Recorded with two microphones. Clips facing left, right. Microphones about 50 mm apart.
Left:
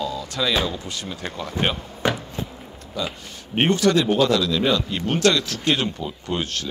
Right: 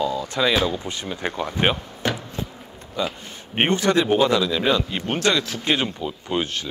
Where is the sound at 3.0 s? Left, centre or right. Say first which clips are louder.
Right 2 dB; right.